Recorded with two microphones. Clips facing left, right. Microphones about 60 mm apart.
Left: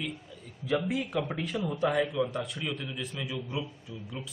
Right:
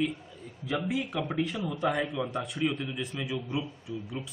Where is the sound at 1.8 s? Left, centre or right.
Centre.